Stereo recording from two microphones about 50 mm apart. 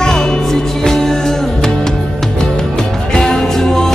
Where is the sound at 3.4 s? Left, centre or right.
Centre.